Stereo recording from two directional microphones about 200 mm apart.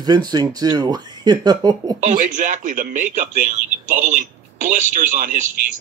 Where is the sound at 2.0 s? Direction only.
40° right (ahead or behind).